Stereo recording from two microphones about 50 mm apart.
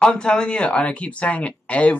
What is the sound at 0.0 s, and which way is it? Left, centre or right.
Speech, centre.